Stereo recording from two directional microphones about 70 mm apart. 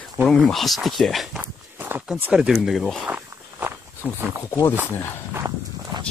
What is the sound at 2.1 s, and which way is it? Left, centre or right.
Speech, centre.